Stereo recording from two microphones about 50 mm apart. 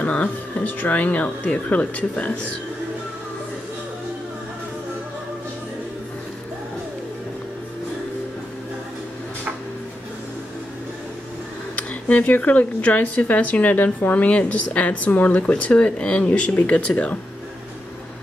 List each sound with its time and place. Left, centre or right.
0.0 s speech: left
11.7 s speech: left